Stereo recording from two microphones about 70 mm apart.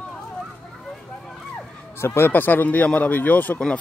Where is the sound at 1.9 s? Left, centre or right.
Left.